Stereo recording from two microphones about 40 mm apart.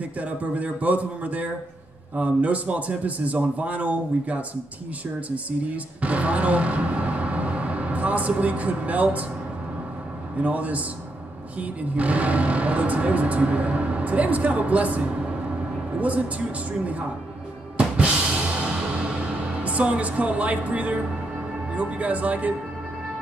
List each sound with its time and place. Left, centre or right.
0.0 s speech: right
10.3 s speech: right
17.7 s drum kit: right
19.6 s speech: right